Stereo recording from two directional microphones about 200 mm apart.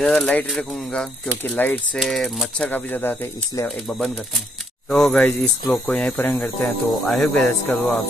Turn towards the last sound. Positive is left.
turn(degrees=5)  # may be behind; listen again after turning